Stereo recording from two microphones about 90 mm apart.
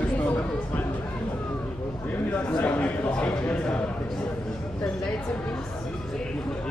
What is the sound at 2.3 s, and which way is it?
A man's voice, 15° left (ahead or behind).